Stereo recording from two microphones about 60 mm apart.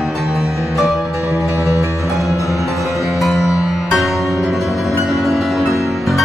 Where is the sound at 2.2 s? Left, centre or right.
Left.